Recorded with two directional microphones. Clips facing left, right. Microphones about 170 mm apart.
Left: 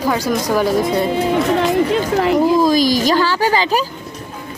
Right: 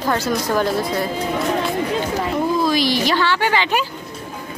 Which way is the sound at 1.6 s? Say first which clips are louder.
Left 6 dB; 80° left.